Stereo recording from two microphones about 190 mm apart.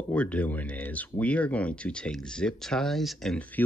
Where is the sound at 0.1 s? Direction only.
5° left (ahead or behind).